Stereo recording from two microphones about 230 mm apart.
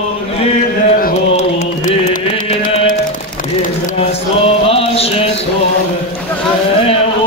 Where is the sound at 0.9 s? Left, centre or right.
Left.